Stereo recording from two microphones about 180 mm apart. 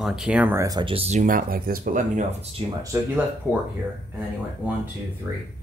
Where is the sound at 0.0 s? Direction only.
5° right (ahead or behind); by 2.6 s 40° right (ahead or behind).